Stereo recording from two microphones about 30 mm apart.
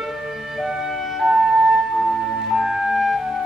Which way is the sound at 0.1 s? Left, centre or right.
Centre.